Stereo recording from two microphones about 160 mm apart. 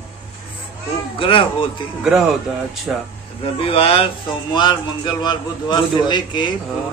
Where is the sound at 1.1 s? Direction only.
35° left (ahead or behind).